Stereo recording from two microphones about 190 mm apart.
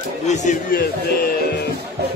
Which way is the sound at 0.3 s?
40° left (ahead or behind).